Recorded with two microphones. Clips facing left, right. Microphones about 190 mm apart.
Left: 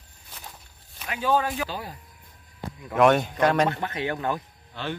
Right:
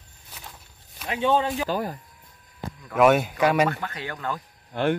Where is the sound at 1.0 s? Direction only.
30° right (ahead or behind).